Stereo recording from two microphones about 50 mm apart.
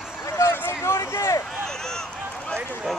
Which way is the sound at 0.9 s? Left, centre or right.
Left.